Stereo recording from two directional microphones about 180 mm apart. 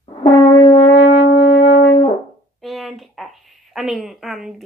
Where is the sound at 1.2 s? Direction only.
75° left (ahead or behind).